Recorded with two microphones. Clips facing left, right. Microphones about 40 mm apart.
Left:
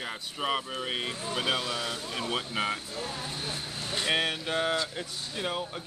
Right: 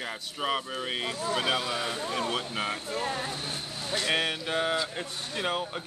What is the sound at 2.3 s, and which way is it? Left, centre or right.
Speech, centre.